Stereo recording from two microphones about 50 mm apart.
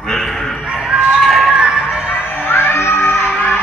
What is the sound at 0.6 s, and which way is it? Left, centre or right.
Basketball bounce, right.